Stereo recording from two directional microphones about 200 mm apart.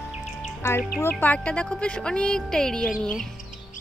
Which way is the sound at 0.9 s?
10° left (ahead or behind).